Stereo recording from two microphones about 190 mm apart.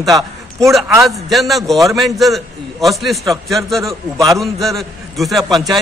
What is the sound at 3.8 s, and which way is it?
Speech, 20° right (ahead or behind).